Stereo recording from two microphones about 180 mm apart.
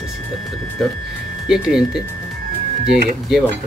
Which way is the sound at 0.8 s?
Centre (ahead or behind).